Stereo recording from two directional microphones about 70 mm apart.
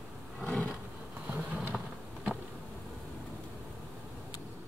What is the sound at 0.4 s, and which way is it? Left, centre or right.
Roar, centre.